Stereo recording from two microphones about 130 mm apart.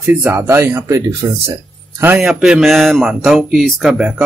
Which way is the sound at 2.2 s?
5° right (ahead or behind).